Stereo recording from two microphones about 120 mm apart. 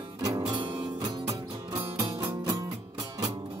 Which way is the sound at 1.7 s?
20° right (ahead or behind).